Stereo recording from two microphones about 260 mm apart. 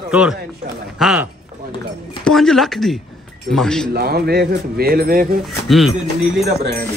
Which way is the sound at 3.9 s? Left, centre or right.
Right.